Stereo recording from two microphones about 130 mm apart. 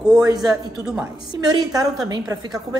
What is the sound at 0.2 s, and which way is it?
A woman's voice, 30° right (ahead or behind).